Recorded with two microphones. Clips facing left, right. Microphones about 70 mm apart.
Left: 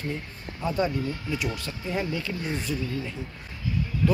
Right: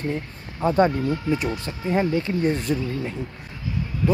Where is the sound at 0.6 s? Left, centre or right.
Right.